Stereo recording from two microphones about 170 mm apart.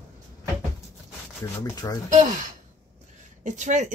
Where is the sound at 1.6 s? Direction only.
20° left (ahead or behind).